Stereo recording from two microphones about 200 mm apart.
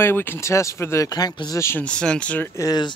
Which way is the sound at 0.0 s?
10° left (ahead or behind).